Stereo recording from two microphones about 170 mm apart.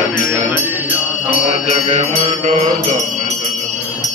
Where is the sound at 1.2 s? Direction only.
40° right (ahead or behind).